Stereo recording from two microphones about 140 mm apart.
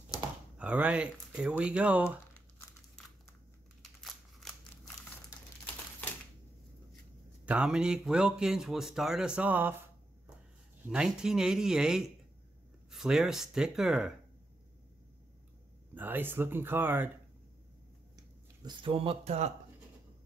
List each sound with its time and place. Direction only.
0.6 s speech: 10° right (ahead or behind)
4.0 s scissors: 5° left (ahead or behind)
7.4 s speech: 10° right (ahead or behind)
10.9 s speech: 5° right (ahead or behind)
15.9 s speech: 15° right (ahead or behind)
18.6 s speech: 35° right (ahead or behind); by 19.5 s 50° right (ahead or behind)